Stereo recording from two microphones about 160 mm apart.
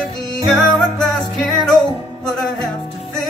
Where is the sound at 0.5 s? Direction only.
Centre (ahead or behind).